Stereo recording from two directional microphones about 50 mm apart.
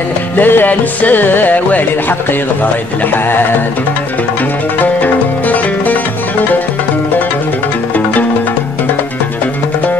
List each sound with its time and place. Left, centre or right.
0.4 s music: left
2.6 s speech: left
5.0 s music: left